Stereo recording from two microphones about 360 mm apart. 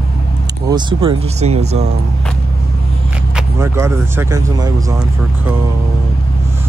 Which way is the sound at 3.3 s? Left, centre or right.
Centre.